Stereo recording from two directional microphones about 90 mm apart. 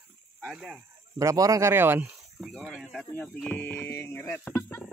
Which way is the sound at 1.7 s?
25° right (ahead or behind).